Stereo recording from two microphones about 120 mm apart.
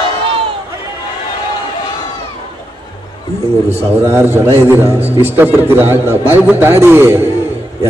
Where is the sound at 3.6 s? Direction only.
60° right (ahead or behind).